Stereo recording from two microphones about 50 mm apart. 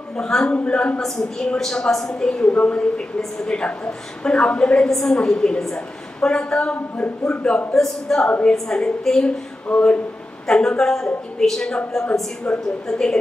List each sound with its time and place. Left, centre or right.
0.2 s a woman's voice: centre
1.6 s a woman's voice: centre
2.4 s a woman's voice: left
4.8 s a woman's voice: centre
7.7 s a woman's voice: centre
8.3 s a woman's voice: left; by 9.3 s centre
9.7 s a woman's voice: left
10.4 s a woman's voice: centre
12.5 s a woman's voice: left